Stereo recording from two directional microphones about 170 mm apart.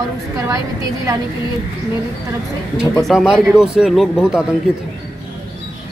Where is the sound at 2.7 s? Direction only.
Centre (ahead or behind).